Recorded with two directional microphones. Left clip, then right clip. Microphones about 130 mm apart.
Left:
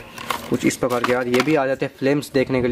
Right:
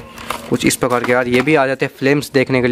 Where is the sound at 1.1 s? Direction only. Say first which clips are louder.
Right 6 dB; 45° right (ahead or behind).